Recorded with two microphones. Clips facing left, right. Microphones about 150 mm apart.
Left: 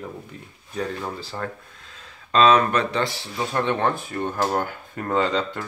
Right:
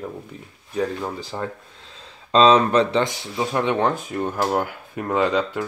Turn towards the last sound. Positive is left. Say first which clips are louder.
# right 2 dB
turn(degrees=-10)  # may be behind; listen again after turning